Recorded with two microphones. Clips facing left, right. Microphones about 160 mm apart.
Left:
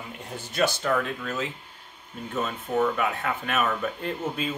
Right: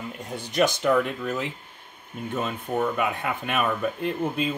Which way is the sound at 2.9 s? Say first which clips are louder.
Right 1 dB; 15° right (ahead or behind).